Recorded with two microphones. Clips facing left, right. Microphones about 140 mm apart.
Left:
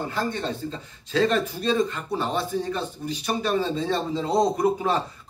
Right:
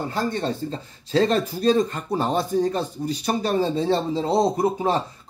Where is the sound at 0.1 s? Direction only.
40° right (ahead or behind).